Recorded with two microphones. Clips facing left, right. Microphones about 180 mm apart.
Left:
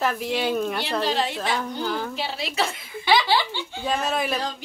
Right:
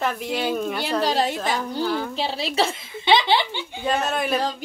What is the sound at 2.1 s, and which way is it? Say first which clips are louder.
A woman's voice: right 4 dB; 30° right (ahead or behind).